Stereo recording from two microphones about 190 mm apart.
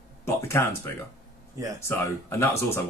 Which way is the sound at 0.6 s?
15° left (ahead or behind).